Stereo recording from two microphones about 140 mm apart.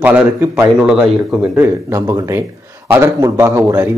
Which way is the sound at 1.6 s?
20° right (ahead or behind).